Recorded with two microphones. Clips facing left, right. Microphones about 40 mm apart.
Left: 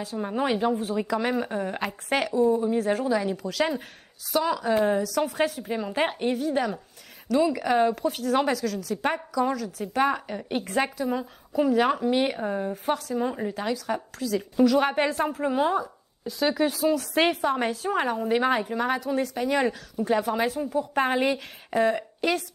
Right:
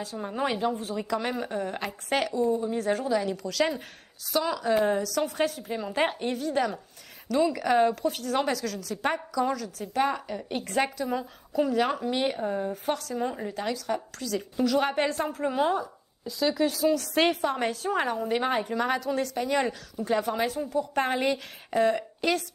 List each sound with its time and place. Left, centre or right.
0.0 s a woman's voice: centre
10.7 s a woman's voice: centre
16.3 s speech: left
16.8 s a woman's voice: centre